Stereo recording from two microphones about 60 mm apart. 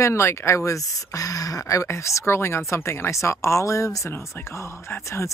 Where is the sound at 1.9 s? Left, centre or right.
Left.